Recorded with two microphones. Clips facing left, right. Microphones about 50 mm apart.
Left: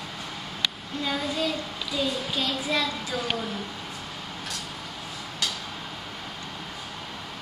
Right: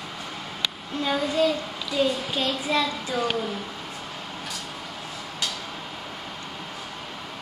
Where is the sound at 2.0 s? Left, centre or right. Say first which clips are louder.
Right 5 dB; centre.